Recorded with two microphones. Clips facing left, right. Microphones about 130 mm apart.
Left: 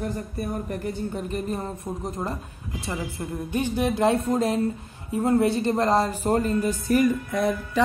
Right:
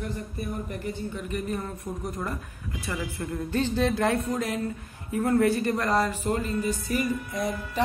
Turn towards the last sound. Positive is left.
turn(degrees=70)  # may be behind; listen again after turning